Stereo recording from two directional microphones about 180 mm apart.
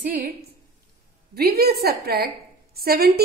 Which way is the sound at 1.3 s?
60° right (ahead or behind).